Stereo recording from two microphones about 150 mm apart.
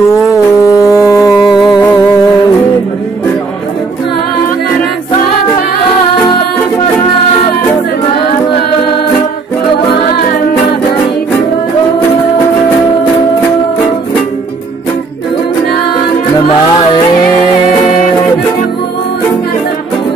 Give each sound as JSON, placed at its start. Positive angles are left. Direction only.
{"t": 0.3, "sound": "music", "side_deg": 20}
{"t": 1.4, "sound": "music", "side_deg": -5}